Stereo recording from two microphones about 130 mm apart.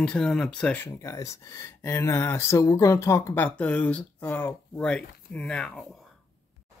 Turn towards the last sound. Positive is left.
turn(degrees=5)  # may be behind; listen again after turning